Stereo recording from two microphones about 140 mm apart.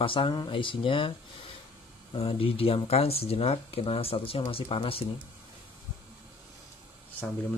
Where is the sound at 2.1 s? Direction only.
40° left (ahead or behind).